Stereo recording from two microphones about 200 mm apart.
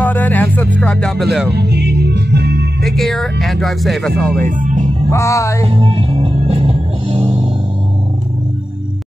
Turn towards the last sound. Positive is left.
turn(degrees=-30)  # may be behind; listen again after turning